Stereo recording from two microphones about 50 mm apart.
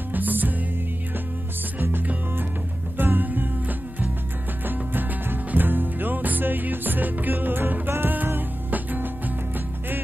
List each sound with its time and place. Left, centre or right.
0.1 s music: right
1.8 s music: right